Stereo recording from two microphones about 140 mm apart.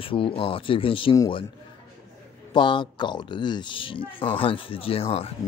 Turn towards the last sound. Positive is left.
turn(degrees=45)  # may be behind; listen again after turning